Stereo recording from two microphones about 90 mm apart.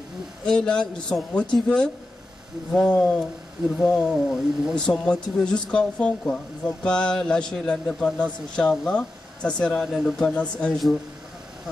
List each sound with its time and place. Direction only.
0.5 s speech: 10° left (ahead or behind)
2.9 s speech: 5° left (ahead or behind)